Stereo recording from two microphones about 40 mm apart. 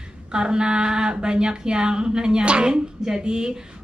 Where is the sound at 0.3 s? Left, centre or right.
Right.